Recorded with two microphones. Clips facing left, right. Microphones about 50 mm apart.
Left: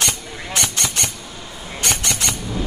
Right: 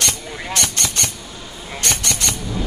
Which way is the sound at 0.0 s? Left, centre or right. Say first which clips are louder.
Even; centre.